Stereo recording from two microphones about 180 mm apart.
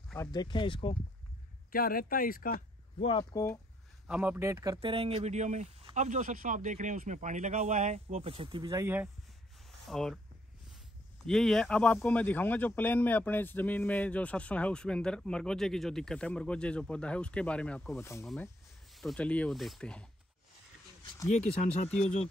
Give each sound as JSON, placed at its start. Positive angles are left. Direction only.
{"t": 0.3, "sound": "speech", "side_deg": 25}
{"t": 1.7, "sound": "speech", "side_deg": 55}
{"t": 2.5, "sound": "speech", "side_deg": 30}
{"t": 4.1, "sound": "speech", "side_deg": -10}
{"t": 4.7, "sound": "speech", "side_deg": -30}
{"t": 9.7, "sound": "a sound", "side_deg": 0}
{"t": 11.2, "sound": "speech", "side_deg": 5}
{"t": 21.3, "sound": "speech", "side_deg": 5}